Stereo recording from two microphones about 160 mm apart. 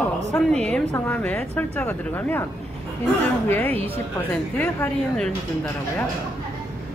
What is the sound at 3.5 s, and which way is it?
Speech, 10° left (ahead or behind).